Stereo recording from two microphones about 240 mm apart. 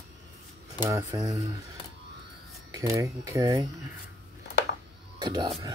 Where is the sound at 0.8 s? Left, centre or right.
Centre.